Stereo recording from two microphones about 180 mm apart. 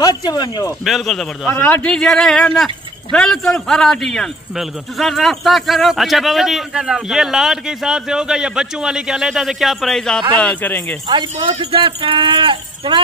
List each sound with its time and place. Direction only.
0.0 s speech: 20° left (ahead or behind)
0.8 s speech: centre (ahead or behind)
11.6 s speech: 30° right (ahead or behind)